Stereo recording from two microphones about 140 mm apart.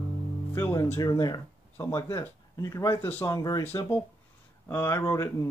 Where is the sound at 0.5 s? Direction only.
20° left (ahead or behind).